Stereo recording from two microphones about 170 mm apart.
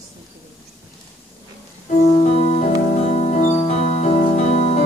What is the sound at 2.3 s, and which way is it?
Music, 40° left (ahead or behind).